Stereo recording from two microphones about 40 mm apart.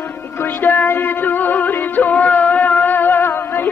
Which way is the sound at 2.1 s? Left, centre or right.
Left.